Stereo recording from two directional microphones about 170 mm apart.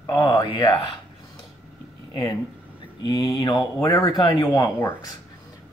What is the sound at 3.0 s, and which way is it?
Speech, 25° left (ahead or behind).